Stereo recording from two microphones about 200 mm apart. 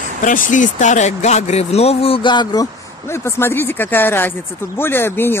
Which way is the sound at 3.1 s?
10° left (ahead or behind).